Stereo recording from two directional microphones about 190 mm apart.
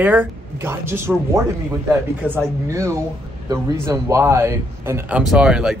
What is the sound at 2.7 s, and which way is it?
Speech, 15° right (ahead or behind).